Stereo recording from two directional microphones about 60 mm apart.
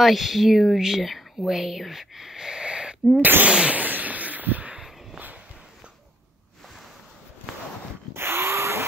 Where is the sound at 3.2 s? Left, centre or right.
Right.